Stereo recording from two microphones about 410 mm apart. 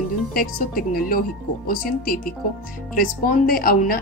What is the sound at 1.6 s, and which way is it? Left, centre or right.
Speech, left.